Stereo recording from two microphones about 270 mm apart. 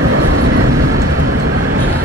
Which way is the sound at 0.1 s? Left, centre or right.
Right.